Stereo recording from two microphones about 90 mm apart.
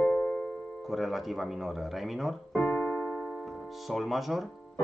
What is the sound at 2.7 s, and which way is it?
Keyboard, 30° left (ahead or behind).